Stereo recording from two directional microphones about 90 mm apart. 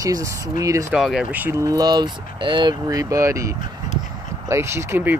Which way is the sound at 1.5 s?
40° right (ahead or behind).